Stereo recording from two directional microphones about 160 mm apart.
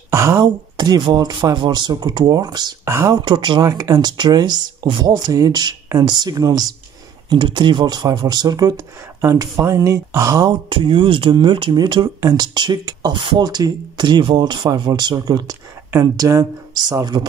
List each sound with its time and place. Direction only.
0.1 s speech: 20° right (ahead or behind)